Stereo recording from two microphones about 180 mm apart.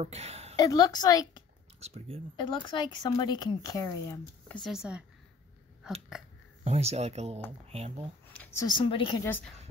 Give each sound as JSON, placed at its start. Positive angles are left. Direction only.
{"t": 0.0, "sound": "a woman's voice", "side_deg": -35}
{"t": 0.6, "sound": "speech", "side_deg": 20}
{"t": 1.8, "sound": "speech", "side_deg": -35}
{"t": 2.3, "sound": "speech", "side_deg": 25}
{"t": 4.6, "sound": "speech", "side_deg": -5}
{"t": 6.6, "sound": "speech", "side_deg": -35}
{"t": 8.3, "sound": "a sound", "side_deg": 10}
{"t": 8.6, "sound": "speech", "side_deg": 25}
{"t": 9.2, "sound": "a woman's voice", "side_deg": 10}